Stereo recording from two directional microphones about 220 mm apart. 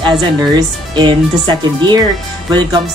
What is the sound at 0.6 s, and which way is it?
Speech, 20° right (ahead or behind).